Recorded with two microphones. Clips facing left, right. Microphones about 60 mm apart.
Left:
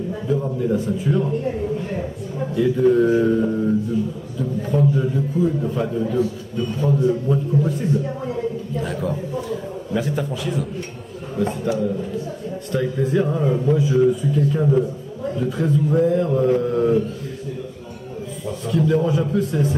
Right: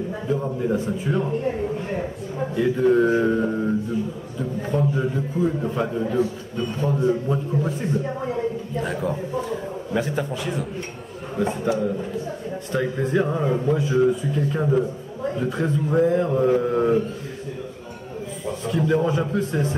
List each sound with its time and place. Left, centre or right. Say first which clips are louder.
0.1 s speech: left 4 dB; centre
2.5 s speech: left 2 dB; centre
8.7 s a man's voice: left 1 dB; centre
12.7 s speech: left 2 dB; centre
13.7 s a man's voice: left 2 dB; centre
14.5 s speech: left 3 dB; centre
18.4 s speech: left 3 dB; centre